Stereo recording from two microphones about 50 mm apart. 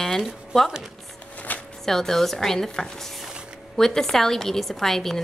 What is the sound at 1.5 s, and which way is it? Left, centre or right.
Shuffling cards, left.